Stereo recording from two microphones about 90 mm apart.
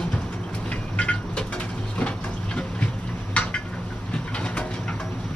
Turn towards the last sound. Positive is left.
turn(degrees=10)  # may be behind; listen again after turning